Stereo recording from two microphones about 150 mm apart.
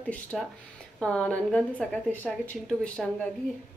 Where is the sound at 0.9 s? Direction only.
5° left (ahead or behind).